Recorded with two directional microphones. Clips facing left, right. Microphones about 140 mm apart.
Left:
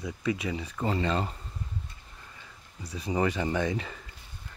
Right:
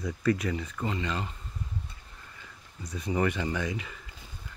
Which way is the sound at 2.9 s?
30° left (ahead or behind).